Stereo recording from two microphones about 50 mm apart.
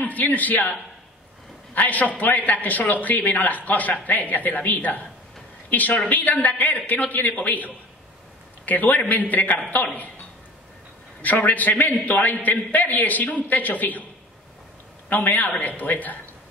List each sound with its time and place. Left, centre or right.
0.0 s a man's voice: left
11.2 s a man's voice: left
15.0 s a man's voice: left